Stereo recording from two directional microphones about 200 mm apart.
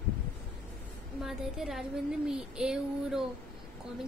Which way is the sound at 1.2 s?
Centre (ahead or behind).